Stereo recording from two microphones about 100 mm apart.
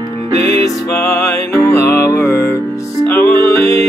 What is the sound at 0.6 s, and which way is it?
Music, 30° left (ahead or behind).